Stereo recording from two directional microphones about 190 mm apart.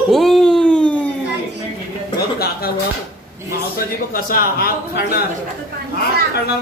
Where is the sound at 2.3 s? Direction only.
55° left (ahead or behind).